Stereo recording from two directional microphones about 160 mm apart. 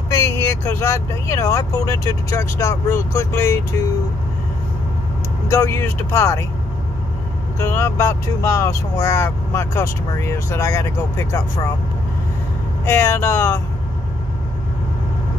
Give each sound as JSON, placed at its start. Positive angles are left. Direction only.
{"t": 0.1, "sound": "speech", "side_deg": 15}
{"t": 5.5, "sound": "speech", "side_deg": 15}
{"t": 7.5, "sound": "speech", "side_deg": 15}
{"t": 12.8, "sound": "speech", "side_deg": 15}